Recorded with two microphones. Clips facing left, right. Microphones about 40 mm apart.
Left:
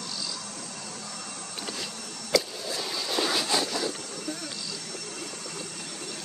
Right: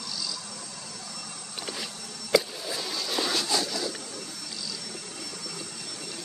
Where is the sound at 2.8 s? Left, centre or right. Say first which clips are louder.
Left 2 dB; centre.